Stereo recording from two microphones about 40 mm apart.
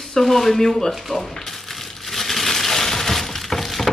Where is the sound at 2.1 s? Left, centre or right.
Centre.